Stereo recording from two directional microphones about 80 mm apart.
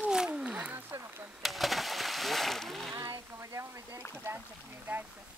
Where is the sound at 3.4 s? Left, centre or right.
Right.